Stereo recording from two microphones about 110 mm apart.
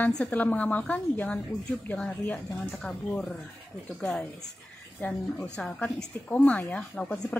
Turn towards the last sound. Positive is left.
turn(degrees=15)  # may be behind; listen again after turning